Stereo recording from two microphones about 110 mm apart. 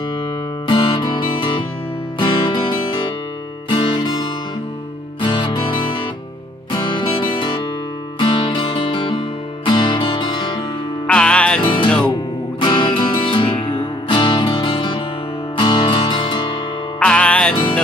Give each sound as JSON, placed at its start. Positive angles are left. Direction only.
{"t": 0.7, "sound": "music", "side_deg": 50}
{"t": 11.1, "sound": "music", "side_deg": 10}
{"t": 11.6, "sound": "music", "side_deg": 50}
{"t": 17.0, "sound": "music", "side_deg": 10}